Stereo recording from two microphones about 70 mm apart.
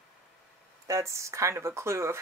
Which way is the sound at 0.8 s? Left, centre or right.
Right.